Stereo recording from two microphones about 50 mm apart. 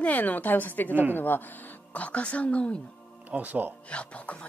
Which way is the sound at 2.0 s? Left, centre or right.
Left.